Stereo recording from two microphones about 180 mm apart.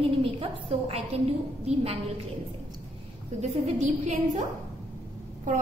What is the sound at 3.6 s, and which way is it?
Speech, 40° right (ahead or behind).